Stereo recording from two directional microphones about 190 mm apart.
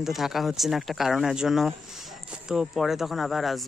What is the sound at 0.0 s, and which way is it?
Speech, centre (ahead or behind).